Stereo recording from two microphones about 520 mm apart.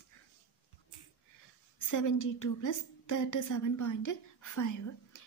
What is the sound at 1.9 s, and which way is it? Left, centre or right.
A woman's voice, left.